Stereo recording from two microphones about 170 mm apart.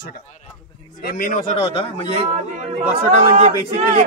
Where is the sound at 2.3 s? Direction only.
40° right (ahead or behind).